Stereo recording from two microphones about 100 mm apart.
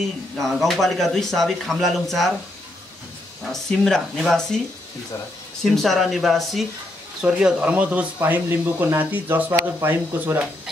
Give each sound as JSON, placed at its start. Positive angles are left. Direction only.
{"t": 0.4, "sound": "speech", "side_deg": 0}
{"t": 3.4, "sound": "speech", "side_deg": 5}
{"t": 5.6, "sound": "speech", "side_deg": 0}